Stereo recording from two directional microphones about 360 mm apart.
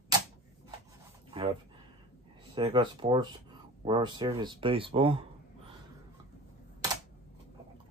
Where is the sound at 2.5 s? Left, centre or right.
Centre.